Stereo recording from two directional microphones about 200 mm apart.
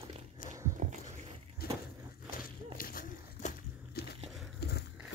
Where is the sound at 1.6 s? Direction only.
50° left (ahead or behind).